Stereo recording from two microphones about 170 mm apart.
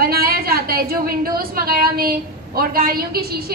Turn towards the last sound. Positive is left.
turn(degrees=-65)  # may be behind; listen again after turning